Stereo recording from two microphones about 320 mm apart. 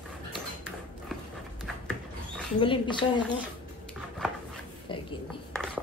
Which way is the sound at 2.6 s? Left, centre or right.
Centre.